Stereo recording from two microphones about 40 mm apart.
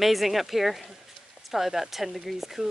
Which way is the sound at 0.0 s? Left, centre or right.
Centre.